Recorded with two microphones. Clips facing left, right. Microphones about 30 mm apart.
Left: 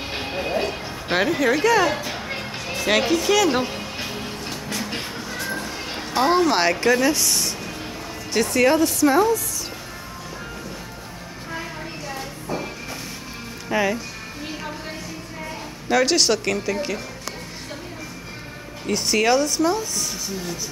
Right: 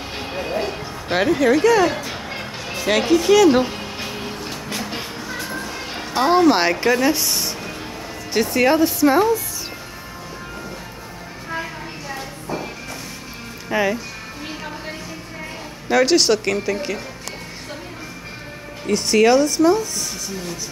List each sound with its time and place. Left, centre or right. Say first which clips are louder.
0.3 s music: right 1 dB; centre
1.1 s speech: right 3 dB; centre
3.2 s music: right 5 dB; centre
5.3 s a sound: even; centre
8.3 s speech: right 1 dB; centre
12.1 s a sound: right 2 dB; centre
13.7 s speech: right 2 dB; centre
14.5 s music: right 1 dB; centre
15.9 s speech: right 3 dB; centre
18.9 s a woman's voice: right 4 dB; centre